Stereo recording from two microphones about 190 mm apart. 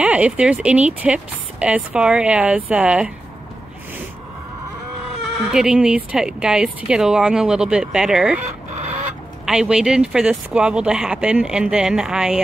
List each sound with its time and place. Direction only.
0.0 s speech: 5° right (ahead or behind)
5.4 s speech: 5° right (ahead or behind)
8.5 s fowl: 35° right (ahead or behind)
9.5 s speech: 5° right (ahead or behind)